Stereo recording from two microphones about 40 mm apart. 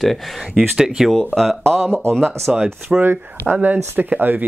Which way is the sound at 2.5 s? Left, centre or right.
Centre.